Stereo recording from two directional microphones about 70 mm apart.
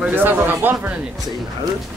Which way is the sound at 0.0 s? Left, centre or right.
Right.